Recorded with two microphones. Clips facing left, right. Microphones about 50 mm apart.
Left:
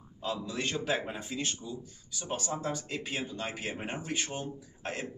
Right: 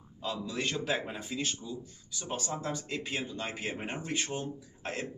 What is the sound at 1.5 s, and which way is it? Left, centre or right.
Speech, centre.